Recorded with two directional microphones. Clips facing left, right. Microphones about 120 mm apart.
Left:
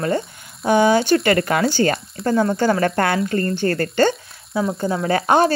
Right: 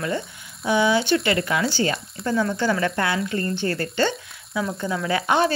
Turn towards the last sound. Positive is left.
turn(degrees=40)  # may be behind; listen again after turning